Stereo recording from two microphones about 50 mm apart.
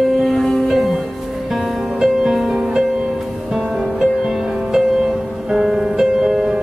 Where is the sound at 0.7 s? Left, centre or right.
Centre.